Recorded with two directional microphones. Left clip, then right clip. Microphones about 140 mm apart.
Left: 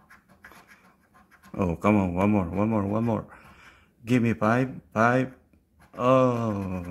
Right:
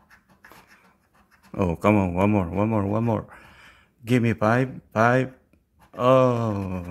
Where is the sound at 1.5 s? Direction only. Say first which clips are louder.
Right 3 dB; 25° right (ahead or behind).